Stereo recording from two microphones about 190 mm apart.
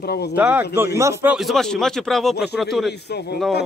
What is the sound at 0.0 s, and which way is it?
Speech, 55° left (ahead or behind).